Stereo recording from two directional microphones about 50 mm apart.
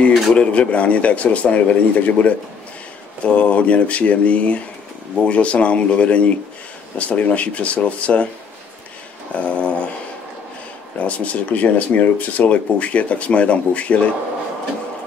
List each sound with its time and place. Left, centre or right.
0.3 s speech: left
9.3 s speech: left
11.0 s speech: left